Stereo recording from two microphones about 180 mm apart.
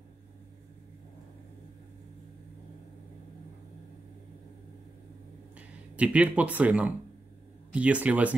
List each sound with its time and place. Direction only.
5.9 s speech: 5° right (ahead or behind)